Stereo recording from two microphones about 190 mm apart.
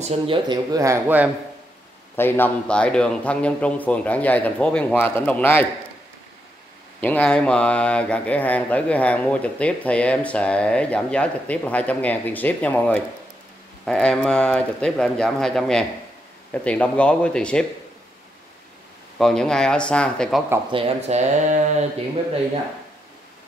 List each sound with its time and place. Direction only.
0.0 s speech: 25° right (ahead or behind); by 1.3 s 10° right (ahead or behind)
2.1 s speech: 10° left (ahead or behind)
7.0 s speech: 10° left (ahead or behind)
19.1 s speech: centre (ahead or behind)
20.7 s speech: 35° right (ahead or behind)